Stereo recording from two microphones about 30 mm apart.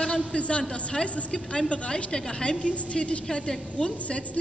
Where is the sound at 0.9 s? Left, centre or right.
Left.